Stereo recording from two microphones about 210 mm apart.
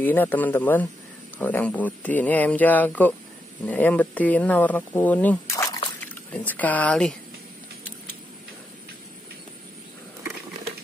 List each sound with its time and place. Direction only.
0.0 s speech: 10° left (ahead or behind)